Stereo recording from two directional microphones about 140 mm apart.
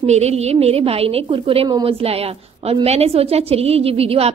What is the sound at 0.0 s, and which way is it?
A woman's voice, 50° right (ahead or behind).